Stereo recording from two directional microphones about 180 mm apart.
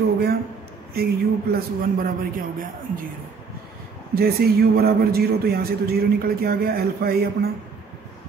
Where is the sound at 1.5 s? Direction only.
55° right (ahead or behind).